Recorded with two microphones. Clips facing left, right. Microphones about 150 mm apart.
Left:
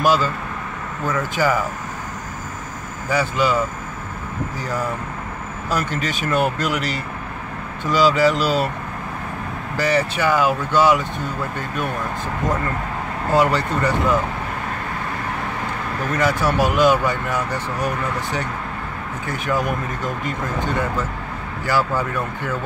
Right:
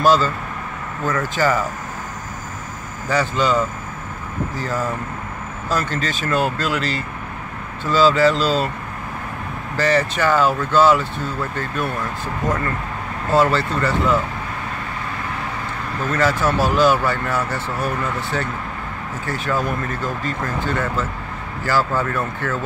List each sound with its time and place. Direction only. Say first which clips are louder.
0.0 s speech: right 2 dB; 10° left (ahead or behind)
3.1 s speech: right 1 dB; 10° left (ahead or behind)
5.7 s speech: right 1 dB; 10° left (ahead or behind)
9.8 s speech: right 1 dB; 10° left (ahead or behind)
13.3 s speech: right 1 dB; 15° left (ahead or behind)
16.1 s speech: right 1 dB; 15° left (ahead or behind)